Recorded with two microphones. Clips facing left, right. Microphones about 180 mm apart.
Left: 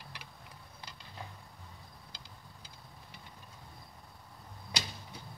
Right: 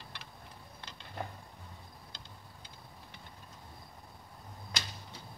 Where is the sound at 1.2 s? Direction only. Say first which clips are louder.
Right 7 dB; 60° right (ahead or behind).